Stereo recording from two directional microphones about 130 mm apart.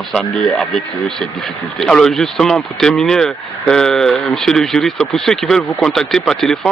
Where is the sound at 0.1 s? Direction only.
5° left (ahead or behind).